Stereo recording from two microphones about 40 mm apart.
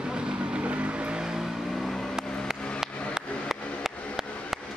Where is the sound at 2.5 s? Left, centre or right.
Left.